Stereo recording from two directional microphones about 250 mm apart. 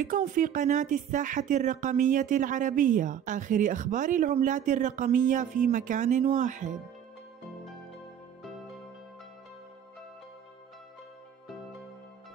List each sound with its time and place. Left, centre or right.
0.0 s speech: right